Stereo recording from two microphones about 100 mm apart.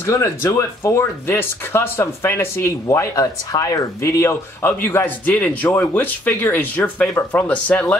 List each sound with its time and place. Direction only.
0.0 s speech: 30° left (ahead or behind)